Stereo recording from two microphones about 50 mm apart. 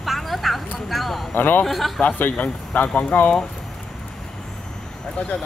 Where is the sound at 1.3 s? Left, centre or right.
Left.